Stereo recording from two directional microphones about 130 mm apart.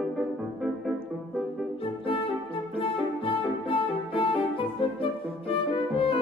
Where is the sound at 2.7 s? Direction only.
45° left (ahead or behind).